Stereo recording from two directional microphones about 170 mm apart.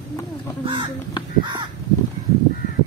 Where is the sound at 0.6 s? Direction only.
30° right (ahead or behind).